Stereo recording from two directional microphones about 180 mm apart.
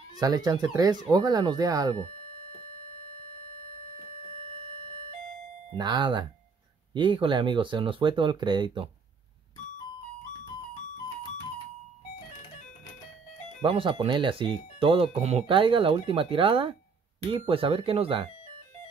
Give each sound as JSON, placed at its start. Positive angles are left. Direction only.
{"t": 0.2, "sound": "speech", "side_deg": -20}
{"t": 5.7, "sound": "speech", "side_deg": -25}
{"t": 13.6, "sound": "speech", "side_deg": -30}